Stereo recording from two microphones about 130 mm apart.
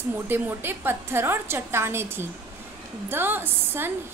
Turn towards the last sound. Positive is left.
turn(degrees=-15)  # may be behind; listen again after turning